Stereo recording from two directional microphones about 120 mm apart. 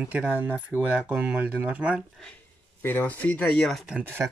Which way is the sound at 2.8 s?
15° left (ahead or behind).